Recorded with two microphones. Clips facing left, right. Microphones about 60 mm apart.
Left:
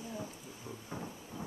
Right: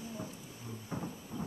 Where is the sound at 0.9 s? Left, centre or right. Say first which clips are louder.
Right 3 dB; centre.